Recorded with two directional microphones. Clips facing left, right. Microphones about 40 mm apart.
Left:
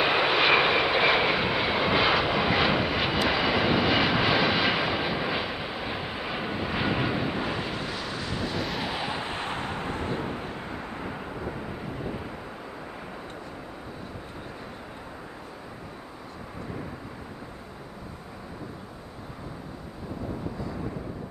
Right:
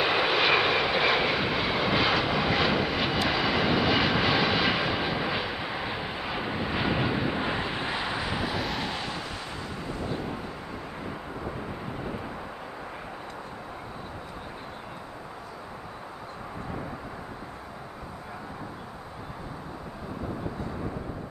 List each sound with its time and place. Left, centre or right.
0.0 s vehicle: centre
7.4 s vehicle: centre
9.2 s artillery fire: left